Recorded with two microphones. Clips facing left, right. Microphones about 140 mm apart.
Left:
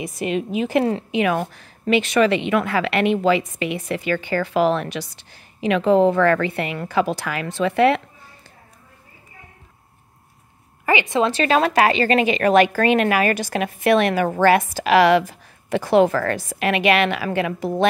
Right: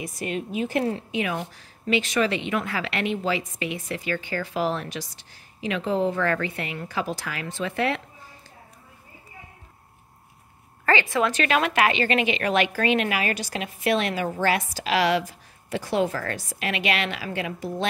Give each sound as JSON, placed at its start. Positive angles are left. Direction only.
{"t": 0.0, "sound": "a woman's voice", "side_deg": 90}
{"t": 1.4, "sound": "speech", "side_deg": 60}
{"t": 10.9, "sound": "a woman's voice", "side_deg": 20}
{"t": 16.3, "sound": "a woman's voice", "side_deg": 60}